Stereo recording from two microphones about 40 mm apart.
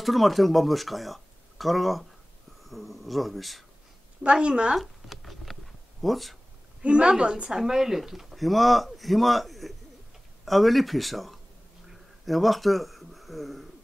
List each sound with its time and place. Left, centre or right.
0.0 s speech: centre
4.2 s a woman's voice: right
4.7 s a sound: centre
6.8 s a woman's voice: right
7.5 s a man's voice: centre
11.9 s a sound: centre